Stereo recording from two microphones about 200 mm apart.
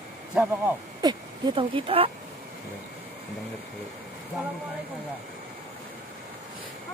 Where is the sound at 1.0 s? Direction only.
20° right (ahead or behind).